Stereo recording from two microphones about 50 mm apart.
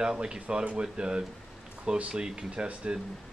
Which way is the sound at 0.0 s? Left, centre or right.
Centre.